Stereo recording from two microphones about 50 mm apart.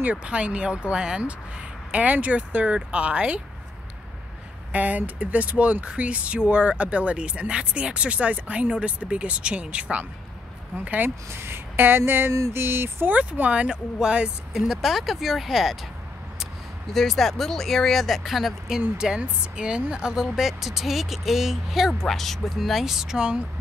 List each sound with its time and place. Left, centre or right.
0.0 s speech: right
1.9 s speech: right
4.7 s speech: right
11.2 s speech: right
12.3 s a sound: right
12.5 s speech: right
13.1 s speech: right
14.5 s speech: centre
16.9 s speech: centre
18.8 s speech: centre